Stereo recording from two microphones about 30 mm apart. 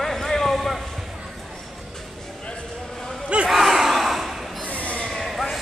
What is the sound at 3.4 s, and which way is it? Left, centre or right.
Battle cry, centre.